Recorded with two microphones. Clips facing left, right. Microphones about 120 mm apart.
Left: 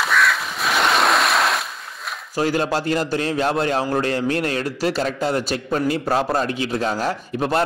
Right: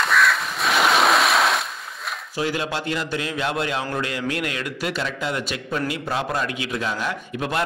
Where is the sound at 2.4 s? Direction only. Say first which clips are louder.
Left 5 dB; 40° left (ahead or behind).